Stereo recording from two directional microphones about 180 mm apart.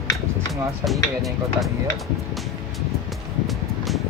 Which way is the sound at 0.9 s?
Centre (ahead or behind).